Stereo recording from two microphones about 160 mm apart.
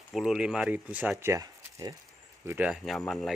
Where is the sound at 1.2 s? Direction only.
20° right (ahead or behind).